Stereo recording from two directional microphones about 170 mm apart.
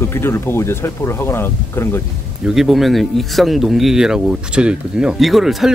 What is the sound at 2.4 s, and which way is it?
Speech, centre (ahead or behind).